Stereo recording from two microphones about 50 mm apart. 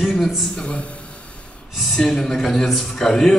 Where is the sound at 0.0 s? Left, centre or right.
Centre.